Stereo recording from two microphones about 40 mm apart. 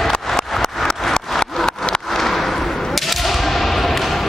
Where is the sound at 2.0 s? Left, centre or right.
Centre.